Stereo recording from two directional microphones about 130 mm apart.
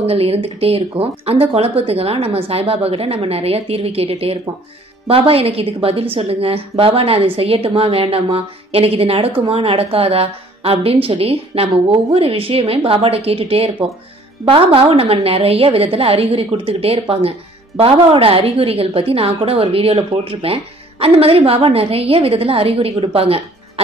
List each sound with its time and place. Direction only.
0.0 s a woman's voice: 50° right (ahead or behind)